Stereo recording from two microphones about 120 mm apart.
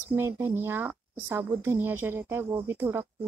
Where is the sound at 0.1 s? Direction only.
20° right (ahead or behind).